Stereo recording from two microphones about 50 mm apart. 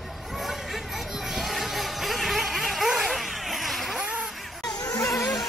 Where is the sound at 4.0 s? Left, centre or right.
Right.